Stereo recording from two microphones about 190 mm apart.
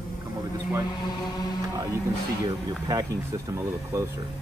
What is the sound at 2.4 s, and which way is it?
Speech, 20° right (ahead or behind).